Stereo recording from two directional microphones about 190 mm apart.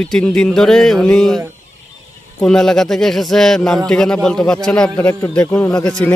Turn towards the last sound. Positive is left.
turn(degrees=5)  # may be behind; listen again after turning